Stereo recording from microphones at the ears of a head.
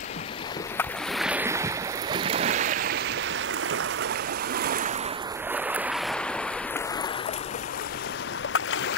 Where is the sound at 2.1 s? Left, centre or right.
Right.